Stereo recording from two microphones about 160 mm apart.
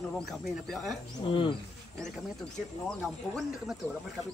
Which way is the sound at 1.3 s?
30° left (ahead or behind).